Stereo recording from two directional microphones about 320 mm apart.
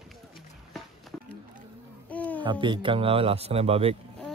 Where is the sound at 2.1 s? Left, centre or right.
Centre.